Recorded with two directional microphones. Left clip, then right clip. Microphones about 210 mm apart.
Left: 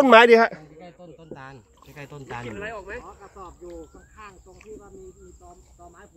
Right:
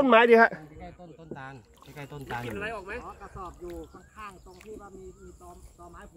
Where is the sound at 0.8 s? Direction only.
20° left (ahead or behind).